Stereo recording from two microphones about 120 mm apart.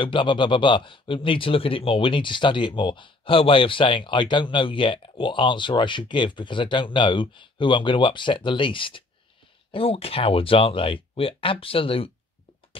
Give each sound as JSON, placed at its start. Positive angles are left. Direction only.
{"t": 0.0, "sound": "speech", "side_deg": 45}